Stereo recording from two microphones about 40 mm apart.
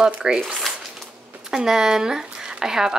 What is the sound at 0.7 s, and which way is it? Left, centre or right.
Squish, centre.